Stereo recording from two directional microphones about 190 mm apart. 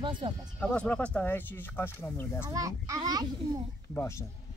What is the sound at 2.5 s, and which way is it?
A child's voice, 20° right (ahead or behind).